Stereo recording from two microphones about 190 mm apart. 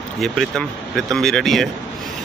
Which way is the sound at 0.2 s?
Centre (ahead or behind).